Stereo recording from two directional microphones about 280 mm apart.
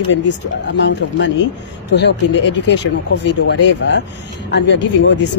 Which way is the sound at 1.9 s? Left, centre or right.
Left.